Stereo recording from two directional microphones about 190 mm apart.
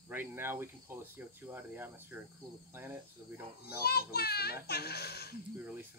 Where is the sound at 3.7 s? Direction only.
55° left (ahead or behind).